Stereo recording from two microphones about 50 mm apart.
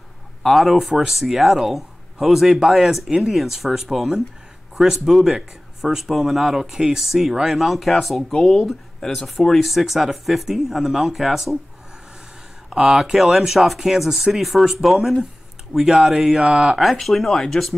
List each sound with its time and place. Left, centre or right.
0.4 s speech: centre
8.3 s speech: centre
12.6 s speech: centre
16.3 s speech: centre
17.0 s speech: centre